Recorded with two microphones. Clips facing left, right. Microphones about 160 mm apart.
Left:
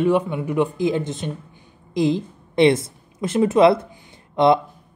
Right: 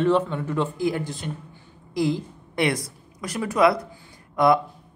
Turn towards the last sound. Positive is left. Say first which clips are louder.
# left 3 dB
turn(degrees=25)  # may be behind; listen again after turning